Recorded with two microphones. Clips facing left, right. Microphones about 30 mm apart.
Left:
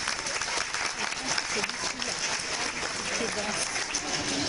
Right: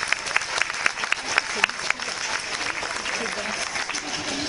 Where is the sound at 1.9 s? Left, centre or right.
Right.